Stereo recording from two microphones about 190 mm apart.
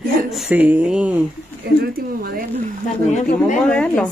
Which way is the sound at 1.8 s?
55° right (ahead or behind).